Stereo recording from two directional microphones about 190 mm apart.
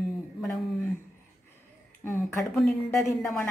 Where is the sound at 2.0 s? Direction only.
15° left (ahead or behind).